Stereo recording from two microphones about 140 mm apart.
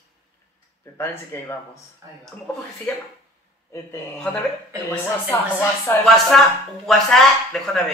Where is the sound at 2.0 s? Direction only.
25° right (ahead or behind).